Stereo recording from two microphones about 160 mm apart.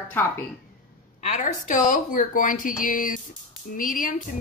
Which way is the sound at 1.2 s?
50° left (ahead or behind).